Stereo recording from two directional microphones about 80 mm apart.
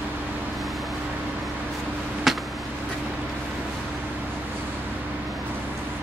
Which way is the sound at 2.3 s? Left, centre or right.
Centre.